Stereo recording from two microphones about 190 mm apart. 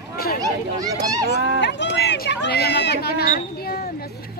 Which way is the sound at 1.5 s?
65° left (ahead or behind).